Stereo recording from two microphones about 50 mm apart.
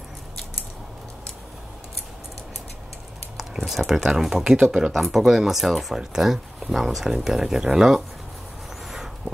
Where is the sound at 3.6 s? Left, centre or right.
Centre.